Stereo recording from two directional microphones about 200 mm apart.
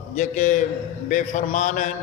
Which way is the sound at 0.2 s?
40° left (ahead or behind).